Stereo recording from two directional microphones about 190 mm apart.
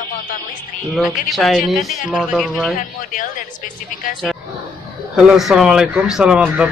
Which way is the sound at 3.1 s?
45° left (ahead or behind).